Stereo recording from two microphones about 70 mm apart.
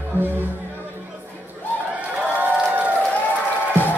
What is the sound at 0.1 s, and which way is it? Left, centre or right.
Speech, left.